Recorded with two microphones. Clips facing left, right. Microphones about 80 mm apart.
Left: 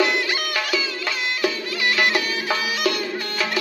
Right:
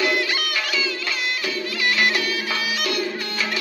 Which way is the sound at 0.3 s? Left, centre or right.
Centre.